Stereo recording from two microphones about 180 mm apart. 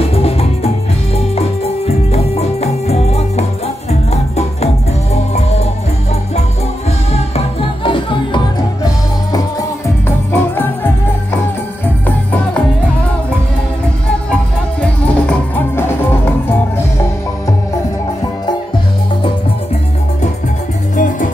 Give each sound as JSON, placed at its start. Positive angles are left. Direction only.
{"t": 0.1, "sound": "music", "side_deg": 35}
{"t": 2.1, "sound": "music", "side_deg": 35}
{"t": 7.3, "sound": "music", "side_deg": 30}
{"t": 10.0, "sound": "music", "side_deg": 10}
{"t": 14.3, "sound": "music", "side_deg": 5}
{"t": 20.9, "sound": "music", "side_deg": 45}